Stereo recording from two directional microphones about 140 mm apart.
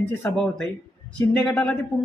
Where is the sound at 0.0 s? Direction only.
15° left (ahead or behind).